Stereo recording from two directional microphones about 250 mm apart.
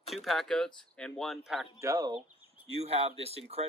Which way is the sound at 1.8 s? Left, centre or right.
Centre.